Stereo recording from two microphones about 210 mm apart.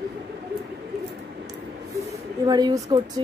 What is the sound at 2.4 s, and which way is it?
Speech, 20° right (ahead or behind).